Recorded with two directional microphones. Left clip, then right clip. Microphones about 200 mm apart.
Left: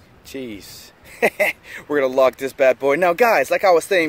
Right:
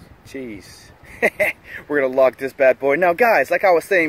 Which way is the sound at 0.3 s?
20° left (ahead or behind).